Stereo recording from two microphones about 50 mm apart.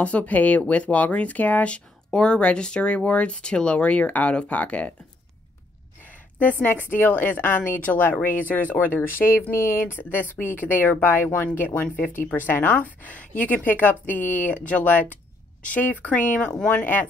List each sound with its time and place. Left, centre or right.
0.0 s speech: left
2.0 s speech: centre
6.0 s a woman's voice: left